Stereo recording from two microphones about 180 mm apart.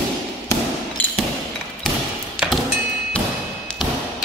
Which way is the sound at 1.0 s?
10° left (ahead or behind).